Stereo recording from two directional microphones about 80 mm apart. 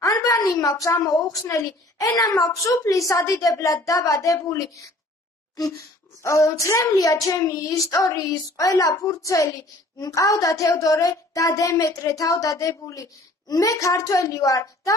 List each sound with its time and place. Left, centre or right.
0.0 s a sound: left
1.0 s a woman's voice: left
6.2 s a woman's voice: left